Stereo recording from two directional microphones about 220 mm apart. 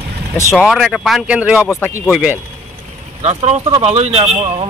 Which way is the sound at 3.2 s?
30° right (ahead or behind).